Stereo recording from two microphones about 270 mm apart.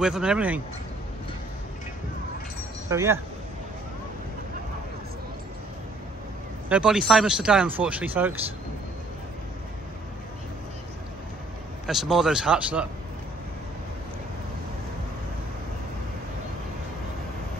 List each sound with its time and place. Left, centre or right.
0.0 s speech: centre
2.9 s speech: centre
6.7 s speech: centre
11.8 s speech: centre